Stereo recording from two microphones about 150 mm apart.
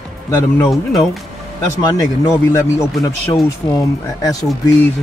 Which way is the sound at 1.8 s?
25° left (ahead or behind).